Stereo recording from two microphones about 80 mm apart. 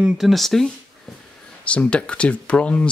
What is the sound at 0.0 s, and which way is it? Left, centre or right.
Speech, centre.